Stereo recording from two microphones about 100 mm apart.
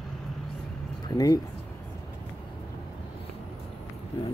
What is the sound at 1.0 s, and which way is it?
Speech, 40° left (ahead or behind).